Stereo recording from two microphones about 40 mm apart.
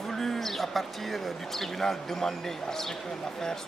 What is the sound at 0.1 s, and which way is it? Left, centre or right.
Speech, centre.